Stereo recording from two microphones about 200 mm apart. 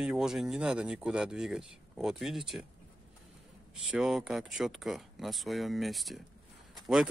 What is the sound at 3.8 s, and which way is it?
Speech, 5° right (ahead or behind).